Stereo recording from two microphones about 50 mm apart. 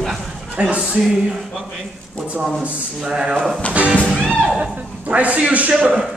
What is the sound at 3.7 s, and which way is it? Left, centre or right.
Music, right.